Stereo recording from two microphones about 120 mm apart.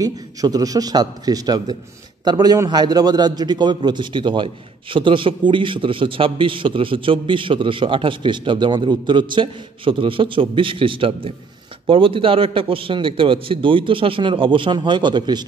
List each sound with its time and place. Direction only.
0.0 s a man's voice: 30° right (ahead or behind)